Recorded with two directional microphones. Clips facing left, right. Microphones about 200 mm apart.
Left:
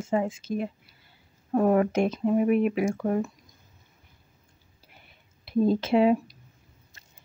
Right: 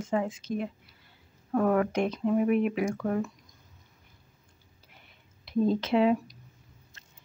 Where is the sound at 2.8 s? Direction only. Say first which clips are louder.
Left 3 dB; 25° left (ahead or behind).